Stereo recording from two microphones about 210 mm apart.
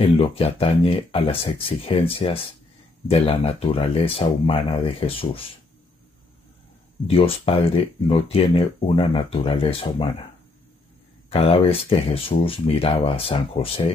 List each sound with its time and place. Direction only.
0.2 s speech: 30° left (ahead or behind)
7.1 s speech: 25° left (ahead or behind)
11.2 s speech: 25° left (ahead or behind)